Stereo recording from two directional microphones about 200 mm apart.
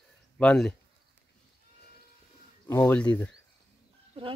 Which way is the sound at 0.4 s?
5° left (ahead or behind).